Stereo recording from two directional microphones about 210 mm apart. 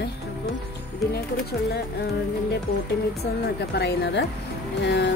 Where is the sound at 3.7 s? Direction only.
55° left (ahead or behind).